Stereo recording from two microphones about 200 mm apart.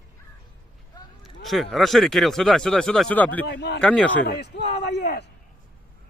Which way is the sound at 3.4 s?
55° left (ahead or behind).